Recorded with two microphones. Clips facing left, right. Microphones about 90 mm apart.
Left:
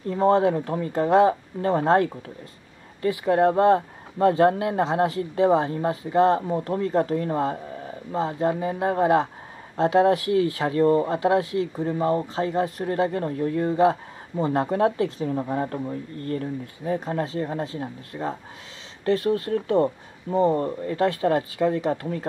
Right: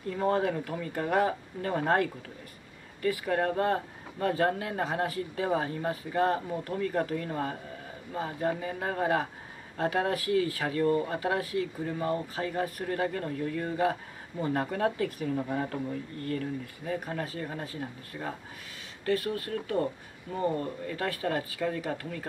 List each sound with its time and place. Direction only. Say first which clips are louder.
0.1 s speech: left 8 dB; 30° left (ahead or behind)